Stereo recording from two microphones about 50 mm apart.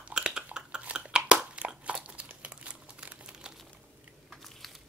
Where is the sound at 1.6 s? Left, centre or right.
Right.